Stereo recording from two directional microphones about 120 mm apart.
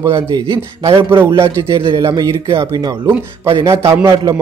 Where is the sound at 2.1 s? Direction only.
25° right (ahead or behind).